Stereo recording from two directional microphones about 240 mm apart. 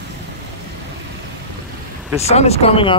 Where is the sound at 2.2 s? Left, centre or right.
Left.